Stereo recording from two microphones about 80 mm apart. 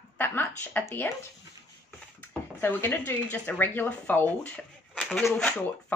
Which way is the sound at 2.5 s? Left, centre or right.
Left.